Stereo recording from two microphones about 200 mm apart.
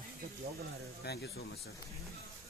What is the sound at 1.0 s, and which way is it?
Speech, 55° left (ahead or behind).